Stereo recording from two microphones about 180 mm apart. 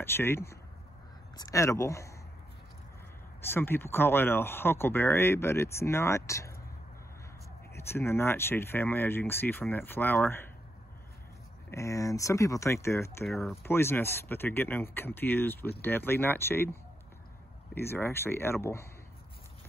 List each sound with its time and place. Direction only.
0.0 s speech: 15° left (ahead or behind)
3.3 s speech: 10° left (ahead or behind)
7.7 s speech: 15° left (ahead or behind)
11.7 s speech: 15° left (ahead or behind)
13.3 s speech: centre (ahead or behind)
13.6 s speech: 15° left (ahead or behind)
17.7 s speech: 15° left (ahead or behind)